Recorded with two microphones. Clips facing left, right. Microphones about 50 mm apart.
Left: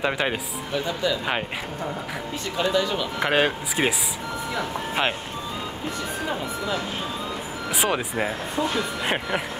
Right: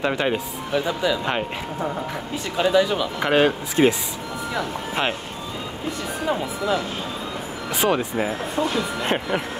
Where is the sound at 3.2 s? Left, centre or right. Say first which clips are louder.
Right 3 dB; centre.